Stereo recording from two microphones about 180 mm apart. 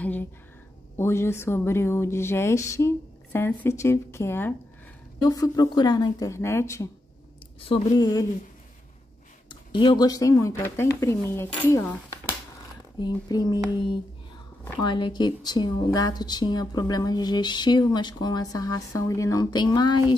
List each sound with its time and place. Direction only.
0.0 s a woman's voice: 10° left (ahead or behind)
7.6 s a woman's voice: 25° left (ahead or behind)
9.5 s speech: 25° left (ahead or behind); by 12.0 s 10° left (ahead or behind)
13.0 s a woman's voice: 20° left (ahead or behind)